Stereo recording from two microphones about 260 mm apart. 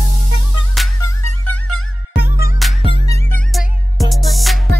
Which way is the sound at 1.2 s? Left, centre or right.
Left.